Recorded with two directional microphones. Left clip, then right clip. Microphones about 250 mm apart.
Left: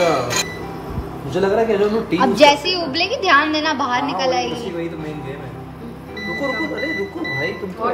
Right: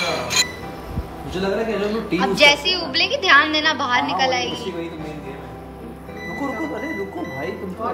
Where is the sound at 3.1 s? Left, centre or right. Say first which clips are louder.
Even; centre.